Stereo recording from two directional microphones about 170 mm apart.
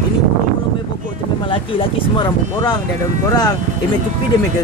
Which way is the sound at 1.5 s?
30° left (ahead or behind).